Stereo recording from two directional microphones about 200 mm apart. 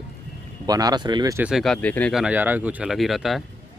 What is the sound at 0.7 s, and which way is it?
Speech, 20° right (ahead or behind).